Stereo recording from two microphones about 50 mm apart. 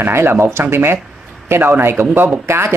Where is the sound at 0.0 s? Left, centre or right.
Right.